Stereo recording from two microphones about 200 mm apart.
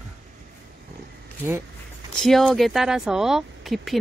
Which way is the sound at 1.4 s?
10° right (ahead or behind).